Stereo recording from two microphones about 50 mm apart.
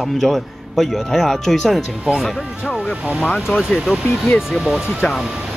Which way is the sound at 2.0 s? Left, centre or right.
Centre.